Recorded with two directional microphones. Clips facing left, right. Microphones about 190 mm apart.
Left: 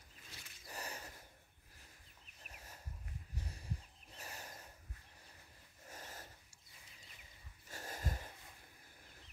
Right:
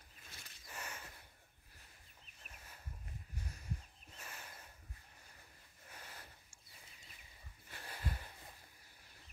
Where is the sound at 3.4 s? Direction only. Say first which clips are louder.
Even; 30° left (ahead or behind).